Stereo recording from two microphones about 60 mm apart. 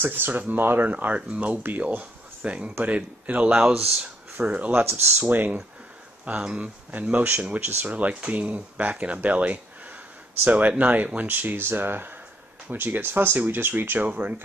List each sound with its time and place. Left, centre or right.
0.0 s speech: right
3.4 s speech: centre
4.0 s speech: right
6.2 s speech: centre